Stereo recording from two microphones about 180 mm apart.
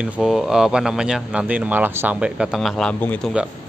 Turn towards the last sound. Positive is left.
turn(degrees=10)  # may be behind; listen again after turning